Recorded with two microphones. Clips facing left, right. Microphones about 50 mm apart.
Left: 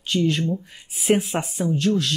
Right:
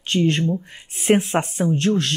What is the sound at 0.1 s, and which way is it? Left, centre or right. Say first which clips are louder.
Speech: right 2 dB; right.